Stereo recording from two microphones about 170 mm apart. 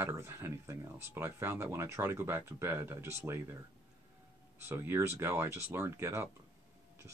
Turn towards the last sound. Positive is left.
turn(degrees=-15)  # may be behind; listen again after turning